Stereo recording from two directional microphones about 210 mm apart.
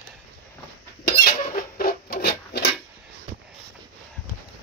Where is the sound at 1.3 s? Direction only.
45° left (ahead or behind).